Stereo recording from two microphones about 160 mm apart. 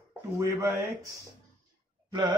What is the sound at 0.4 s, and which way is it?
Speech, 20° right (ahead or behind).